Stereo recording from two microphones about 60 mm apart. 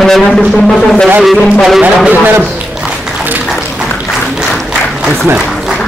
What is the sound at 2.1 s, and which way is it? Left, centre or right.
Speech, right.